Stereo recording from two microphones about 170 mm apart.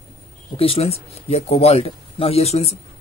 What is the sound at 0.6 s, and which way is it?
Speech, 35° left (ahead or behind).